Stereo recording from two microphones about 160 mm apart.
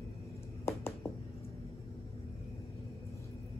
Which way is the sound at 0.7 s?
15° left (ahead or behind).